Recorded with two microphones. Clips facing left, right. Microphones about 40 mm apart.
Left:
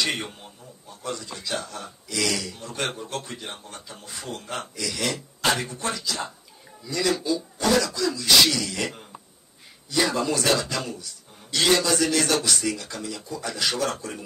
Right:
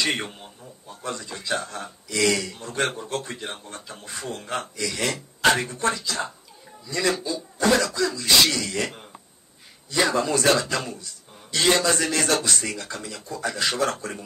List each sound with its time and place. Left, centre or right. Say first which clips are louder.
1.0 s a man's voice: right 1 dB; right
4.4 s speech: right 4 dB; right
4.7 s a man's voice: even; right
5.5 s speech: right 4 dB; right
5.9 s a man's voice: right 1 dB; right
9.9 s a man's voice: right 2 dB; right